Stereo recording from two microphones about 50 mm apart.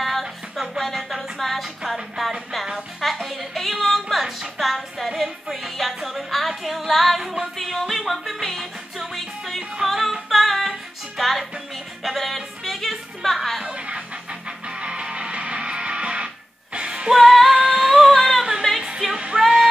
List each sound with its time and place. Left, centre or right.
0.0 s music: centre
13.7 s music: right
16.7 s music: centre